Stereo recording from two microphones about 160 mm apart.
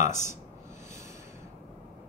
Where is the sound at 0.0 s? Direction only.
50° left (ahead or behind).